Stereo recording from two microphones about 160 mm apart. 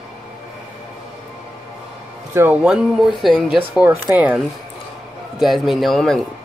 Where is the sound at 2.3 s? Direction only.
10° right (ahead or behind).